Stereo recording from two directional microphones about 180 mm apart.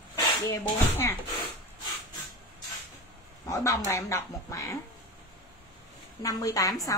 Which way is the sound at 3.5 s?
15° left (ahead or behind).